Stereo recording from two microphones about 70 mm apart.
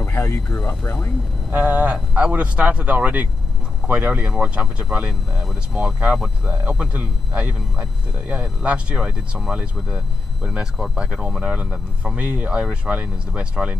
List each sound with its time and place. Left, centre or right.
0.0 s speech: left
1.5 s speech: right
4.4 s speech: centre
5.3 s speech: centre
5.8 s speech: centre
6.1 s speech: centre
6.6 s speech: centre